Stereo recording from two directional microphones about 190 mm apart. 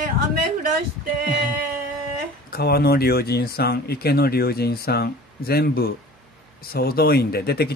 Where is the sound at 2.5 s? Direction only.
55° left (ahead or behind).